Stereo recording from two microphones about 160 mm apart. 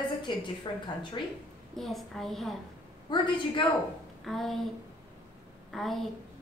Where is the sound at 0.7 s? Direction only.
30° left (ahead or behind).